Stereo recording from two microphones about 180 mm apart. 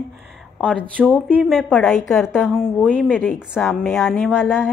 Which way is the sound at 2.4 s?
10° left (ahead or behind).